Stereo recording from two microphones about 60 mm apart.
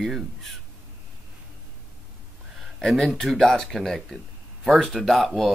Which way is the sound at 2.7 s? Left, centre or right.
Centre.